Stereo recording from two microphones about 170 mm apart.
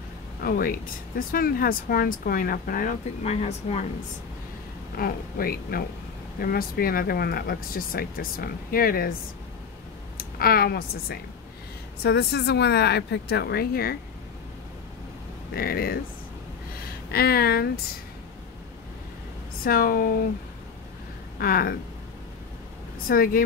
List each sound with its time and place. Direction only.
0.4 s speech: 60° left (ahead or behind)
3.3 s speech: 40° left (ahead or behind)
4.9 s speech: 60° left (ahead or behind)
10.1 s speech: 60° left (ahead or behind)
12.0 s speech: 75° left (ahead or behind)
15.5 s speech: 60° left (ahead or behind)
17.1 s speech: 65° left (ahead or behind)
19.6 s speech: 60° left (ahead or behind)
21.4 s speech: 60° left (ahead or behind)
23.0 s speech: 55° left (ahead or behind)